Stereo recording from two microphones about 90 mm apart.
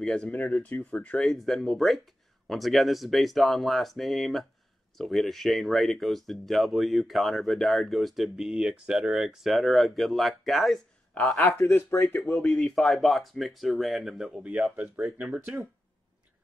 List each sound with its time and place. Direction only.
0.0 s speech: 10° left (ahead or behind)
11.7 s speech: 30° left (ahead or behind)
12.4 s speech: 10° left (ahead or behind); by 15.2 s 15° right (ahead or behind)